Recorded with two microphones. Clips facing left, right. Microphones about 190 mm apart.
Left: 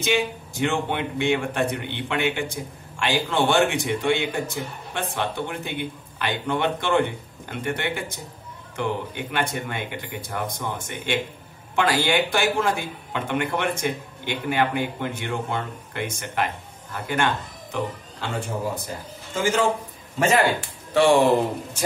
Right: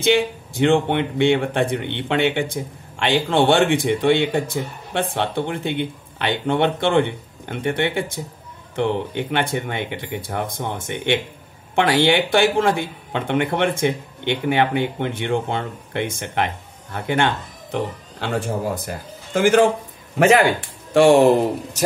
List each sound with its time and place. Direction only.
0.0 s a man's voice: 55° right (ahead or behind)
20.9 s speech: 45° right (ahead or behind)